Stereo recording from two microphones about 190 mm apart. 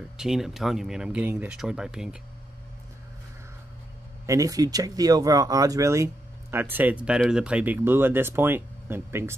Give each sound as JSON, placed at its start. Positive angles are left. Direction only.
{"t": 0.2, "sound": "speech", "side_deg": 0}
{"t": 4.3, "sound": "speech", "side_deg": -20}